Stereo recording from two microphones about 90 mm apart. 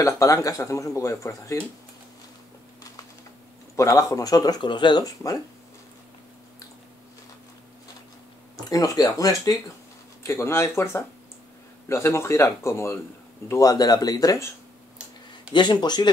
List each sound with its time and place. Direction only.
0.0 s speech: 40° left (ahead or behind)
3.7 s speech: 40° left (ahead or behind)
8.6 s speech: 45° left (ahead or behind)
15.5 s speech: 55° left (ahead or behind)